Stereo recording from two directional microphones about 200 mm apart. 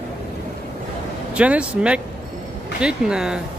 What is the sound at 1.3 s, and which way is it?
Speech, 5° right (ahead or behind).